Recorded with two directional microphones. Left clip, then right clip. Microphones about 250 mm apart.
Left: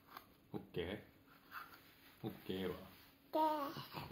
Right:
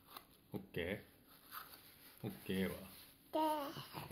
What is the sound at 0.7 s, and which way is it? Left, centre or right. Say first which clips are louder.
Speech: right 2 dB; right.